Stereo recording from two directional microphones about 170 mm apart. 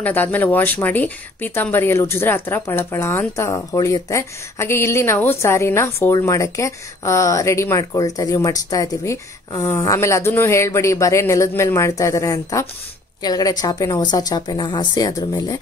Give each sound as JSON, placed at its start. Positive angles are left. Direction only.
{"t": 0.0, "sound": "speech", "side_deg": 10}